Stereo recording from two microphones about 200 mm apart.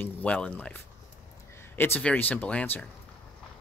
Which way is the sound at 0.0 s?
5° left (ahead or behind).